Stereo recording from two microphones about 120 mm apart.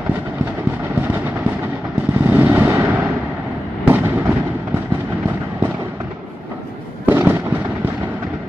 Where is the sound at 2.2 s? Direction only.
15° right (ahead or behind).